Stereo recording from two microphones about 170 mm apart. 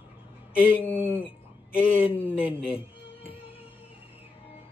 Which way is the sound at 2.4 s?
35° left (ahead or behind).